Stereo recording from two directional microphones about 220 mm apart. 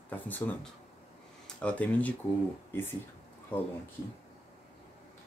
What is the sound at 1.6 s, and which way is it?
Speech, 5° left (ahead or behind).